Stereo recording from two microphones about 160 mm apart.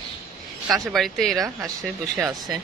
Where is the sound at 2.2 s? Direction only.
25° right (ahead or behind).